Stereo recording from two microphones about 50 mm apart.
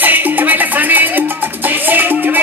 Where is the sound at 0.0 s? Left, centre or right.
Right.